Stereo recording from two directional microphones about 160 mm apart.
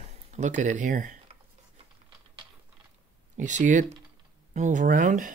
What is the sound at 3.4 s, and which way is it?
Speech, 50° right (ahead or behind).